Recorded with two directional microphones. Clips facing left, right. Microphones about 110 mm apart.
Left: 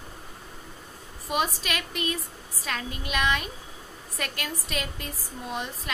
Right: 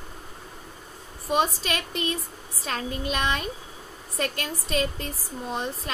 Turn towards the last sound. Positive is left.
turn(degrees=-30)  # may be behind; listen again after turning